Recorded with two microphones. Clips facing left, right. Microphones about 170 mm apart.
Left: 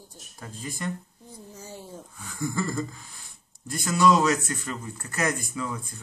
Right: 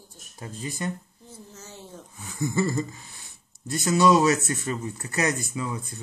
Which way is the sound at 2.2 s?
20° right (ahead or behind).